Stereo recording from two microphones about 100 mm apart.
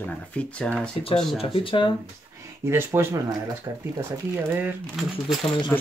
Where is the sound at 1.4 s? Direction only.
60° left (ahead or behind).